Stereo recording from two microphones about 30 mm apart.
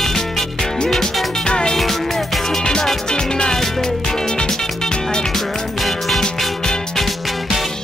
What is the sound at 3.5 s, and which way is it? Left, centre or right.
Music, centre.